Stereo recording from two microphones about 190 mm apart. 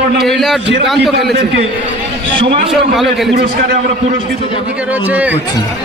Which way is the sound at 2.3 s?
30° right (ahead or behind).